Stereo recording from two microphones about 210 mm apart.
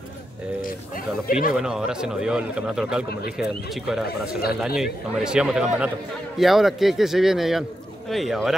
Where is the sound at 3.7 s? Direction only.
Centre (ahead or behind).